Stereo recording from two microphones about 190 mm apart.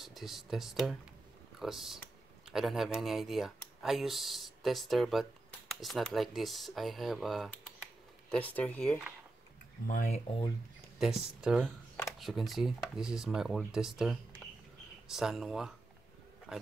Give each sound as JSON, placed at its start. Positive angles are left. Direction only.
{"t": 0.0, "sound": "speech", "side_deg": 0}
{"t": 9.8, "sound": "speech", "side_deg": 40}
{"t": 11.0, "sound": "speech", "side_deg": -5}